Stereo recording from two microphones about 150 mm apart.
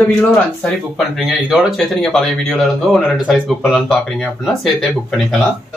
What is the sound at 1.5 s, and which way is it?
Speech, centre (ahead or behind).